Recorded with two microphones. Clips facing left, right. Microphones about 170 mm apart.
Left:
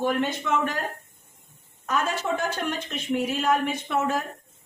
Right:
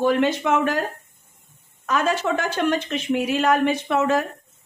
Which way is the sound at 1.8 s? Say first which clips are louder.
Right 5 dB; 90° right.